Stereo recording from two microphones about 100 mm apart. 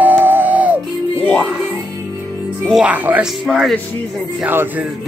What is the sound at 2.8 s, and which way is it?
Speech, 15° right (ahead or behind).